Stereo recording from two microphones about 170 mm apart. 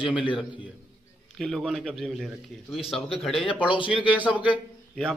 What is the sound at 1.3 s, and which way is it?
A man's voice, centre (ahead or behind).